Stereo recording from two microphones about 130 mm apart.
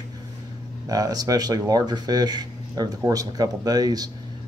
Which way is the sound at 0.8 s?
30° right (ahead or behind).